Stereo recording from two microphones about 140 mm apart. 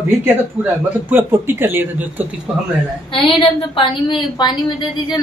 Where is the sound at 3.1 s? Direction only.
35° left (ahead or behind).